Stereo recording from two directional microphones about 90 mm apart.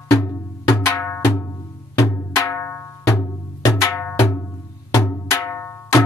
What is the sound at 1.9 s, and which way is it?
Music, 40° left (ahead or behind).